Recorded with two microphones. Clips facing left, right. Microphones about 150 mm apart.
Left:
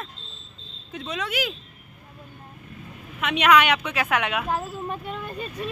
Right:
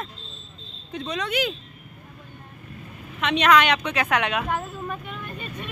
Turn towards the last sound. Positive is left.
turn(degrees=35)  # may be behind; listen again after turning